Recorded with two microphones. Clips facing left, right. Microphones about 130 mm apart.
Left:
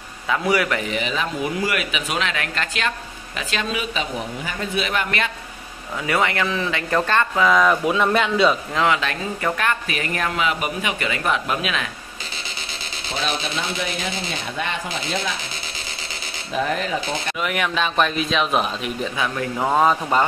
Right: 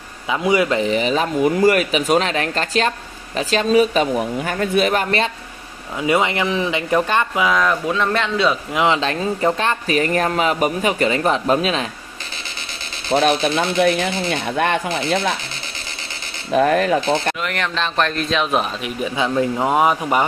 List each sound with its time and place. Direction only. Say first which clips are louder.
0.3 s speech: right 3 dB; 20° right (ahead or behind)
0.9 s speech: right 6 dB; 40° right (ahead or behind)
6.0 s speech: right 3 dB; 20° right (ahead or behind)
7.5 s a man's voice: left 1 dB; 5° left (ahead or behind)
8.7 s speech: right 3 dB; 25° right (ahead or behind)
13.1 s speech: right 10 dB; 55° right (ahead or behind)
16.5 s speech: right 8 dB; 55° right (ahead or behind)
17.4 s speech: even; 5° left (ahead or behind)
19.0 s speech: right 9 dB; 25° right (ahead or behind)